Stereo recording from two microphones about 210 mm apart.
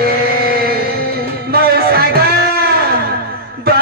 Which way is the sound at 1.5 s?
45° right (ahead or behind).